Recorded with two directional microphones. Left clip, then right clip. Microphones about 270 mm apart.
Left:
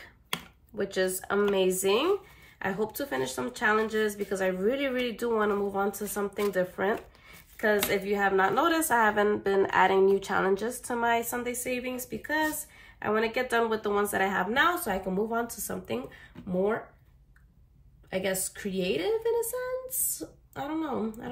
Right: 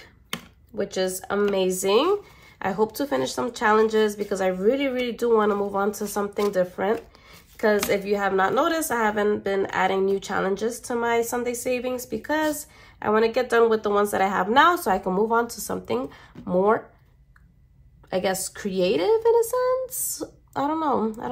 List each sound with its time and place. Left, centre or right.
0.7 s speech: centre
18.1 s a woman's voice: centre
20.5 s speech: centre